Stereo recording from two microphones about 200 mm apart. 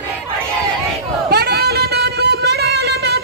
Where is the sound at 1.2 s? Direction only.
55° right (ahead or behind).